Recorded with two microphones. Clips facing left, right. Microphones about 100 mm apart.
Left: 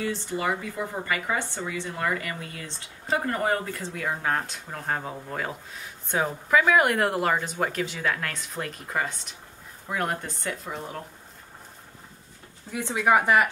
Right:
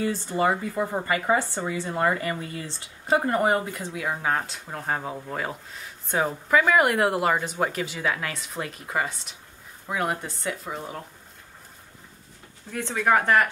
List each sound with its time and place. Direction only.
0.0 s speech: 35° right (ahead or behind); by 11.1 s centre (ahead or behind)
12.7 s speech: 10° left (ahead or behind)